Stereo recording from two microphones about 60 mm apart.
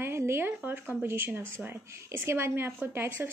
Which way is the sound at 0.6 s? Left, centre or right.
Right.